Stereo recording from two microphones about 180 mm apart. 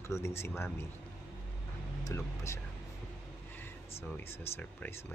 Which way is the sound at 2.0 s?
15° left (ahead or behind).